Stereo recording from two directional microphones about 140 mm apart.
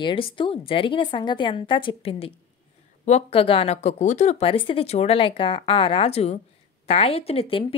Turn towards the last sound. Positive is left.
turn(degrees=40)  # may be behind; listen again after turning